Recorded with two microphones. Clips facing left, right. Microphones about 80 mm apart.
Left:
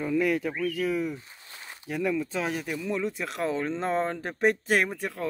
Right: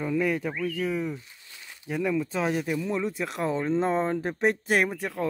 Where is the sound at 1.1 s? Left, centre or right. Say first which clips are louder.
Even; left.